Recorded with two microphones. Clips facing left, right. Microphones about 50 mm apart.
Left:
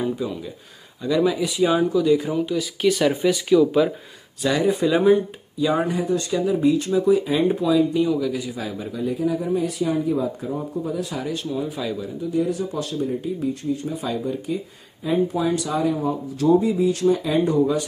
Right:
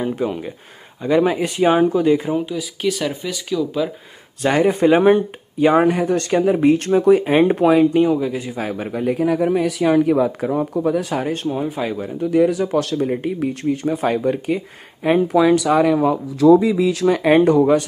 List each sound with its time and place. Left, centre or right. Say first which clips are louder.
0.1 s speech: right 5 dB; right
2.4 s speech: left 1 dB; centre
4.4 s speech: right 4 dB; right
12.2 s speech: right 8 dB; right
15.0 s speech: right 7 dB; right
16.7 s speech: right 2 dB; right